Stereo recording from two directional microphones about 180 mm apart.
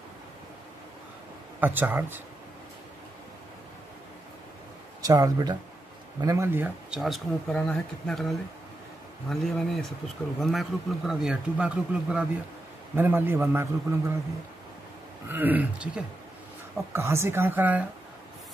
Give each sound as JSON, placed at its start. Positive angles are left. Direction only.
{"t": 1.6, "sound": "a man's voice", "side_deg": -10}
{"t": 5.0, "sound": "a man's voice", "side_deg": -20}
{"t": 15.2, "sound": "a man's voice", "side_deg": -10}